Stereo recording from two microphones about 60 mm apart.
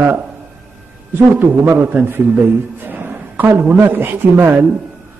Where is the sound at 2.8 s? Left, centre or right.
Right.